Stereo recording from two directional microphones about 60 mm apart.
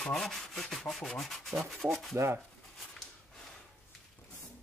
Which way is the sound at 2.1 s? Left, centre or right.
Right.